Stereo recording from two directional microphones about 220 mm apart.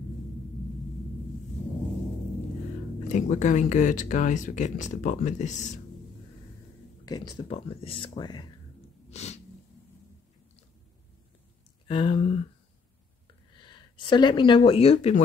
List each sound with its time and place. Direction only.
3.1 s speech: 35° left (ahead or behind)
7.1 s speech: 20° left (ahead or behind)
9.1 s sneeze: 30° left (ahead or behind)
11.9 s speech: 25° left (ahead or behind)
13.6 s speech: 20° left (ahead or behind)